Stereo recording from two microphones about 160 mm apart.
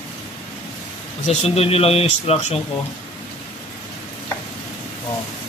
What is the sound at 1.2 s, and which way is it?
Speech, 40° left (ahead or behind).